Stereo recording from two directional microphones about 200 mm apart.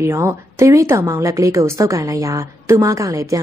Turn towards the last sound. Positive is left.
turn(degrees=-15)  # may be behind; listen again after turning